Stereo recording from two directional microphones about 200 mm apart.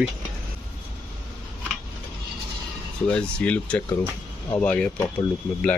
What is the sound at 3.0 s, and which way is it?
Speech, 5° left (ahead or behind).